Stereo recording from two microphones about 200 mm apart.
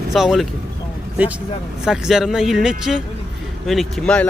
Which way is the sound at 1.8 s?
5° right (ahead or behind).